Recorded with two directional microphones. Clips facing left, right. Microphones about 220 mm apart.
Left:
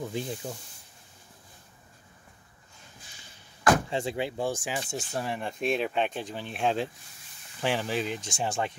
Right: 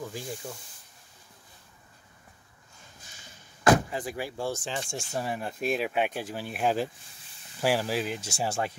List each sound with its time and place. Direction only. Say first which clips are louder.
0.0 s speech: left 3 dB; 20° left (ahead or behind)
3.9 s speech: left 4 dB; 25° left (ahead or behind); by 8.7 s 5° right (ahead or behind)